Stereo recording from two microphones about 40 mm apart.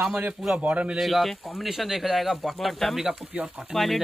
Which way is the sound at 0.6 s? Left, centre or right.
Right.